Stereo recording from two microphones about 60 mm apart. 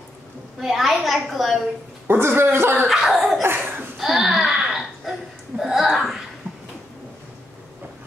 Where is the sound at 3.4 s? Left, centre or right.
Right.